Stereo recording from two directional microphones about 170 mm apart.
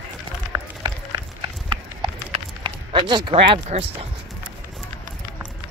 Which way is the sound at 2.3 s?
30° right (ahead or behind).